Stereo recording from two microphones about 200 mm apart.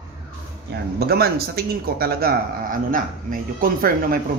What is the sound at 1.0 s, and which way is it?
A man's voice, 50° right (ahead or behind).